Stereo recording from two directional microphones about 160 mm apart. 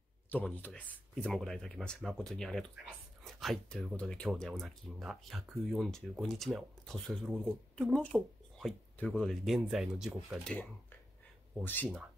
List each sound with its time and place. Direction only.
0.3 s speech: 10° left (ahead or behind)
11.6 s speech: 10° left (ahead or behind)